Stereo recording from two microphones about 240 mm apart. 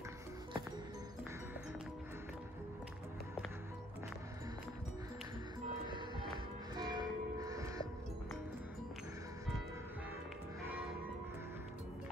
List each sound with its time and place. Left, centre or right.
5.9 s music: centre